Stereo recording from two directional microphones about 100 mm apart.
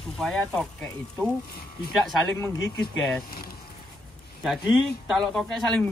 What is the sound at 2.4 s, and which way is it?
Speech, 30° left (ahead or behind).